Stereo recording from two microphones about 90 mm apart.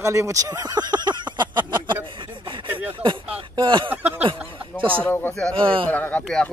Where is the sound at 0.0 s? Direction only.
30° right (ahead or behind); by 2.0 s 60° right (ahead or behind).